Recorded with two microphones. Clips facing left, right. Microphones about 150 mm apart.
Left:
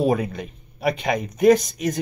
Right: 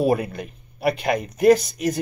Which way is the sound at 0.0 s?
5° right (ahead or behind).